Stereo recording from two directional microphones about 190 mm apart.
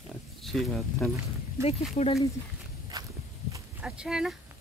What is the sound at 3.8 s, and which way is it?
Speech, 5° right (ahead or behind).